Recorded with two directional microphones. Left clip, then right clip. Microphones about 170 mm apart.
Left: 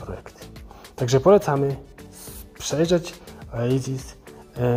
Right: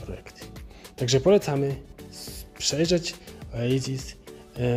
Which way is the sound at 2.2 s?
45° right (ahead or behind).